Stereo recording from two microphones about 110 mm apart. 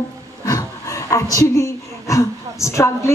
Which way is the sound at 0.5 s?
30° left (ahead or behind).